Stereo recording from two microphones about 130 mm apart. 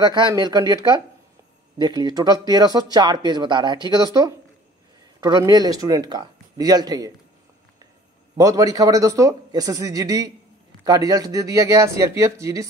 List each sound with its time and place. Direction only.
0.0 s speech: 35° right (ahead or behind)
1.8 s speech: 35° right (ahead or behind)
5.4 s speech: 30° right (ahead or behind)
8.4 s a man's voice: 25° right (ahead or behind)